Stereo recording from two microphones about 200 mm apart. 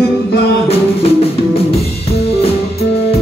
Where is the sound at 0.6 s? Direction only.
30° left (ahead or behind).